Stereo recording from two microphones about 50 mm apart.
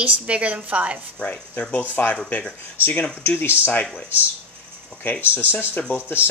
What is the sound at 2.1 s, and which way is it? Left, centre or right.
Speech, left.